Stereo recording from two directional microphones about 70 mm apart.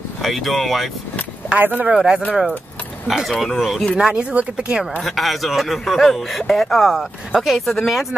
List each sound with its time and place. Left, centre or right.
0.2 s a man's voice: centre
1.6 s speech: right
2.0 s speech: centre
5.0 s a man's voice: centre